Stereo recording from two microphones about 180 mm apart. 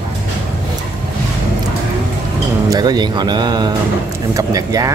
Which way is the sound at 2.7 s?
20° right (ahead or behind).